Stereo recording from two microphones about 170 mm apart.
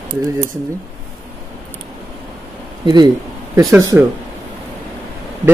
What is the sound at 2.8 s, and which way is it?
Speech, 25° right (ahead or behind).